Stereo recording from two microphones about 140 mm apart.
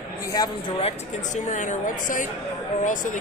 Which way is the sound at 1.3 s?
60° left (ahead or behind).